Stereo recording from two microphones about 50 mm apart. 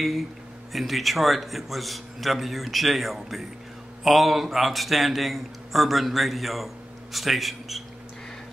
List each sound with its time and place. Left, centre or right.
0.7 s a man's voice: centre